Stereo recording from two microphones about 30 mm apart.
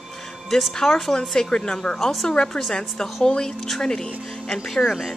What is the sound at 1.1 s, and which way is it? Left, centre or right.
A woman's voice, left.